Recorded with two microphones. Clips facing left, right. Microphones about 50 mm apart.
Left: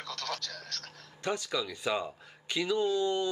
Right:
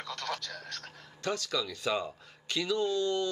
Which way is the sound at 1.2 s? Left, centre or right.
Centre.